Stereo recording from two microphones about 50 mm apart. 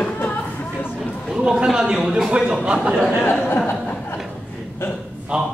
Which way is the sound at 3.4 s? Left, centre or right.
Left.